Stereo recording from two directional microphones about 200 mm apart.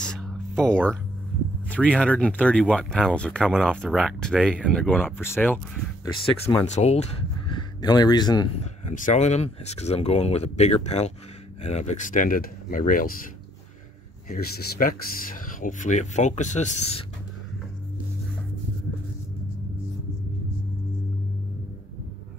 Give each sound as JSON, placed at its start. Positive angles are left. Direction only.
{"t": 0.0, "sound": "a sound", "side_deg": 5}
{"t": 1.7, "sound": "speech", "side_deg": 5}
{"t": 6.7, "sound": "speech", "side_deg": 35}
{"t": 8.8, "sound": "speech", "side_deg": 40}
{"t": 14.3, "sound": "speech", "side_deg": 50}